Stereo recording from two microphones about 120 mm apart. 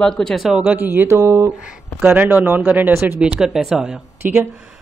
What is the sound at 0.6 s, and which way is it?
Speech, 15° right (ahead or behind).